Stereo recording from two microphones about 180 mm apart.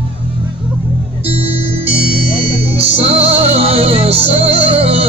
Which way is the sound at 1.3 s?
35° right (ahead or behind).